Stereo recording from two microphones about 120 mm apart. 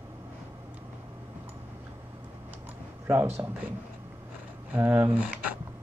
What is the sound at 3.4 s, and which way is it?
Speech, 20° right (ahead or behind).